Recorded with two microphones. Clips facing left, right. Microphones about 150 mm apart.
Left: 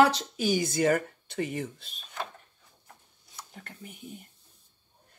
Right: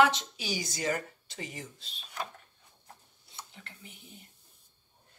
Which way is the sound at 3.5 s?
45° left (ahead or behind).